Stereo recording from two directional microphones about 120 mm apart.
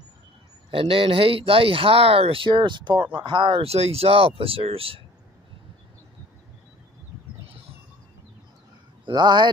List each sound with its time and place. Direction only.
0.7 s speech: 50° right (ahead or behind)
3.6 s speech: 60° right (ahead or behind)
9.0 s speech: 40° right (ahead or behind)